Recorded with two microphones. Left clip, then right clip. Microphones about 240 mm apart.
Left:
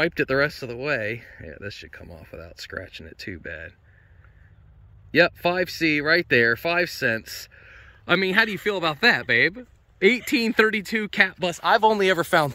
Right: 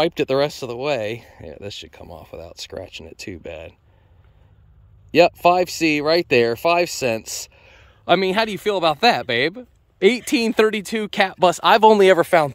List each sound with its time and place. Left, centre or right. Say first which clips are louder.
0.0 s speech: right 3 dB; centre
5.1 s speech: right 6 dB; centre
11.6 s speech: right 5 dB; right
12.2 s speech: right 5 dB; centre